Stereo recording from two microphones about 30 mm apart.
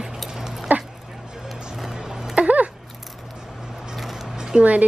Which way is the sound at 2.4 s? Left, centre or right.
Right.